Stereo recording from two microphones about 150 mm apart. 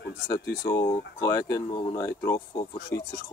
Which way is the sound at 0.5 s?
25° left (ahead or behind).